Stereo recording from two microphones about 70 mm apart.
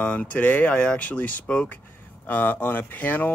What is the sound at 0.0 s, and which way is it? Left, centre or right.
Speech, left.